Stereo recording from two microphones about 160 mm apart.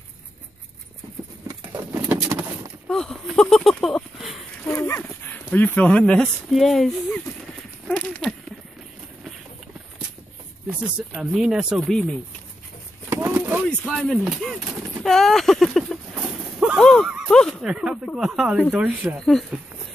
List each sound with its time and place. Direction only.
1.5 s patter: 20° right (ahead or behind)
2.9 s speech: 5° left (ahead or behind)
4.6 s dog: 15° left (ahead or behind)
5.5 s speech: 10° left (ahead or behind)
7.9 s a sound: 10° left (ahead or behind)
11.1 s speech: 5° right (ahead or behind)
13.1 s a sound: 15° right (ahead or behind)
13.7 s speech: 5° left (ahead or behind)
16.5 s a sound: 5° right (ahead or behind)
17.3 s speech: 5° left (ahead or behind)
19.1 s speech: 5° left (ahead or behind)